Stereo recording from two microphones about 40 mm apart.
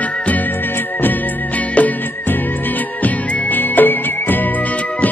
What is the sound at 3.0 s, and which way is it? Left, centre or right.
Music, left.